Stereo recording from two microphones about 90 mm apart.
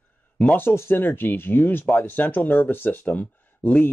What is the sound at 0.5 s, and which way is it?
Speech, 25° left (ahead or behind).